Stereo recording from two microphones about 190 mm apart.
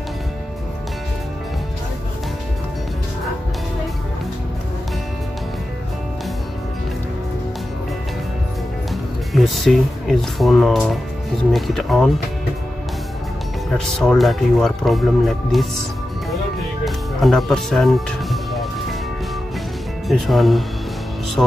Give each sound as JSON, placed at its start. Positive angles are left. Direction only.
{"t": 9.3, "sound": "speech", "side_deg": 0}
{"t": 13.7, "sound": "speech", "side_deg": 0}
{"t": 16.8, "sound": "music", "side_deg": 0}
{"t": 20.1, "sound": "speech", "side_deg": 0}